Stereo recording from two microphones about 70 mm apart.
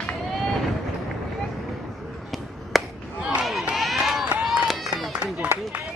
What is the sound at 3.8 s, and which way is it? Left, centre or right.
Run, centre.